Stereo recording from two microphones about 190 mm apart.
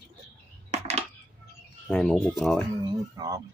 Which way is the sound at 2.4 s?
Centre (ahead or behind).